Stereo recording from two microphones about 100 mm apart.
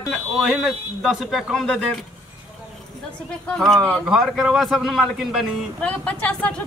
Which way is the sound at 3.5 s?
5° left (ahead or behind).